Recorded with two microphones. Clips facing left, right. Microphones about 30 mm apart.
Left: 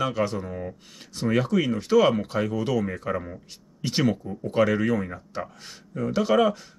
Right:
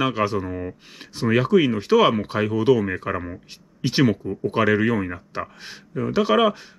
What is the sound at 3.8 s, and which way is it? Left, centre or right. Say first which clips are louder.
Speech: right 5 dB; right.